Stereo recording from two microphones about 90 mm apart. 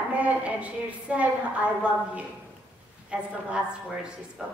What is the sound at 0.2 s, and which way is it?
A woman's voice, 15° right (ahead or behind).